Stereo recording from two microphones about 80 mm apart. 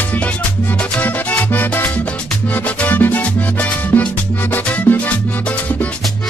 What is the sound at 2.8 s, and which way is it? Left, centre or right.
Music, left.